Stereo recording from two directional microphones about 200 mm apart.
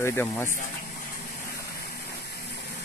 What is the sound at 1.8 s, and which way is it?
Vehicle, 50° left (ahead or behind).